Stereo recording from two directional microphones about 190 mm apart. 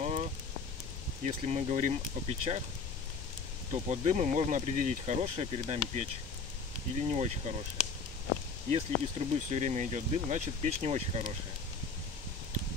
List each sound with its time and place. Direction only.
0.0 s rain on surface: 35° right (ahead or behind)
1.2 s speech: 35° right (ahead or behind)
3.7 s speech: 35° right (ahead or behind)
7.0 s speech: 35° right (ahead or behind)
8.6 s speech: 35° right (ahead or behind)